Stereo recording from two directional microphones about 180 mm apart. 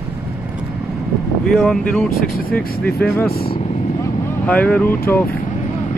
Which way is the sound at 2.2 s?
55° left (ahead or behind).